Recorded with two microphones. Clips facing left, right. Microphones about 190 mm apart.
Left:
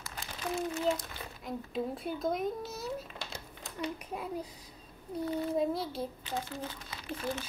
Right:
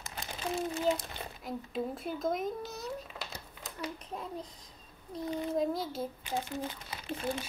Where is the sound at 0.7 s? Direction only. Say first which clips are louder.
Right 1 dB; 15° right (ahead or behind).